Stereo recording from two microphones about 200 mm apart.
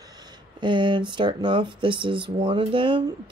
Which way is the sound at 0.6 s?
25° right (ahead or behind).